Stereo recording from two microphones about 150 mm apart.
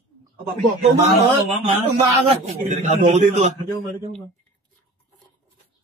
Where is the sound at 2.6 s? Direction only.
55° right (ahead or behind).